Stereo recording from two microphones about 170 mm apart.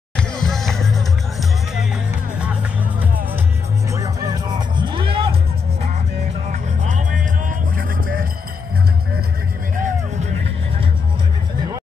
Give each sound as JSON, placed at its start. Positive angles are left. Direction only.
{"t": 0.2, "sound": "music", "side_deg": 5}
{"t": 2.3, "sound": "music", "side_deg": -5}
{"t": 3.9, "sound": "music", "side_deg": -20}
{"t": 6.5, "sound": "music", "side_deg": -45}
{"t": 9.8, "sound": "music", "side_deg": -45}